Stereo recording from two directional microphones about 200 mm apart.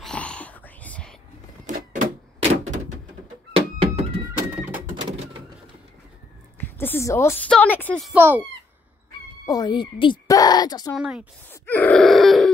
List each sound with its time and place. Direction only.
0.0 s whispering: 5° left (ahead or behind)
1.7 s a sound: 40° right (ahead or behind)
3.5 s a sound: 30° right (ahead or behind)
4.3 s a sound: 10° right (ahead or behind)
6.6 s a woman's voice: 10° left (ahead or behind)
8.1 s speech: 10° right (ahead or behind)
9.5 s a woman's voice: 20° left (ahead or behind)
11.0 s speech: 5° right (ahead or behind)
11.6 s groan: 10° left (ahead or behind)